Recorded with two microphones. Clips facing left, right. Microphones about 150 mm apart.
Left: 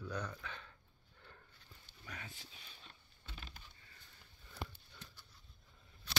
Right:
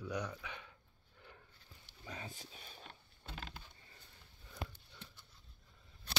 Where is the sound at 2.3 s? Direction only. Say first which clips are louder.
Right 5 dB; 45° right (ahead or behind).